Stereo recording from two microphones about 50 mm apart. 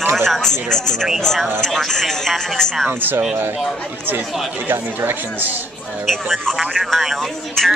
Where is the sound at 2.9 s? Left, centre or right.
Right.